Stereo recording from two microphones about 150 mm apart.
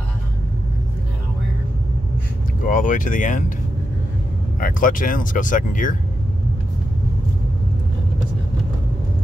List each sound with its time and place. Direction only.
2.6 s speech: 60° left (ahead or behind)
4.6 s speech: 65° left (ahead or behind)